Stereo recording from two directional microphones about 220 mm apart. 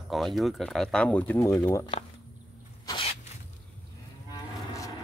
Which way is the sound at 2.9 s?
25° left (ahead or behind).